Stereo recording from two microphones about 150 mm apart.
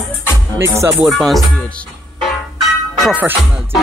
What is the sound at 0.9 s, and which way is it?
Music, centre (ahead or behind).